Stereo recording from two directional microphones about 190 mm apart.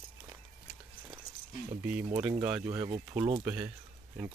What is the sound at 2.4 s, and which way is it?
Speech, 10° right (ahead or behind).